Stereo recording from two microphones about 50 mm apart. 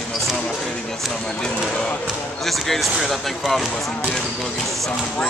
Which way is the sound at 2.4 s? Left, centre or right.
Centre.